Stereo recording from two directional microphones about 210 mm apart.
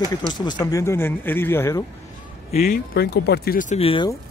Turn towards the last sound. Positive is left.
turn(degrees=25)  # may be behind; listen again after turning